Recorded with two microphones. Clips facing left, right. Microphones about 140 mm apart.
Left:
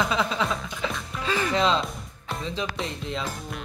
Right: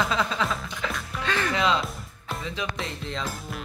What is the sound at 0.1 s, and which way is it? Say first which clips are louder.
Music: left 1 dB; 15° left (ahead or behind).